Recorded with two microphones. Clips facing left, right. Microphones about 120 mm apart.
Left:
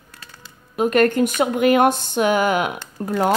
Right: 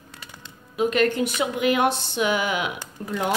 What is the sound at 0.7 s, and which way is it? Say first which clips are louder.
Speech: left 4 dB; 50° left (ahead or behind).